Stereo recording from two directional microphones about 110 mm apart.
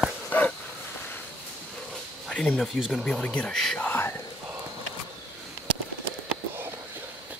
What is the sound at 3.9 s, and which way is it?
Whispering, 20° left (ahead or behind).